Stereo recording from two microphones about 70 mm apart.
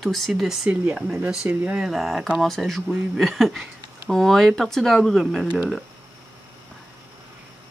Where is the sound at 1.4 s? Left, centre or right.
Right.